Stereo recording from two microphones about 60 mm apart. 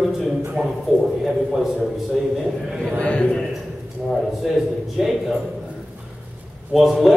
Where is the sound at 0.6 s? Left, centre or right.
Centre.